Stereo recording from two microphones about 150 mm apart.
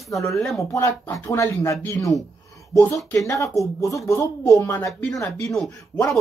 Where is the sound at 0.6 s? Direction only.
20° left (ahead or behind).